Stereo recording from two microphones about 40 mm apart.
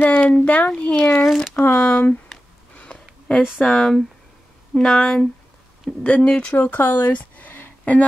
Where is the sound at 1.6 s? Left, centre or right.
Left.